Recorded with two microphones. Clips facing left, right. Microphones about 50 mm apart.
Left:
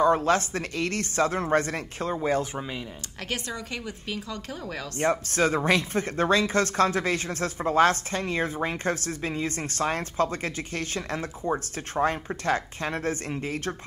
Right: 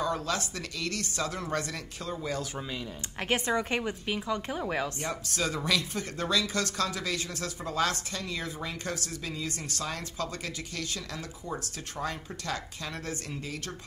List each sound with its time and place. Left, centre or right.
0.0 s speech: left
3.3 s a woman's voice: right
5.1 s speech: left